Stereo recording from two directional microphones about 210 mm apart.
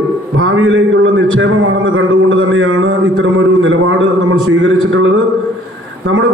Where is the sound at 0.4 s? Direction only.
65° right (ahead or behind).